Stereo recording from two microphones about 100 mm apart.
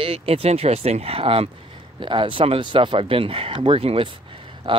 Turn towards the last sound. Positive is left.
turn(degrees=-60)  # may be behind; listen again after turning